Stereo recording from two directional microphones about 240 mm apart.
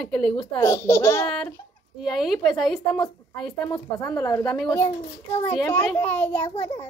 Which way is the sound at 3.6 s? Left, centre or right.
Centre.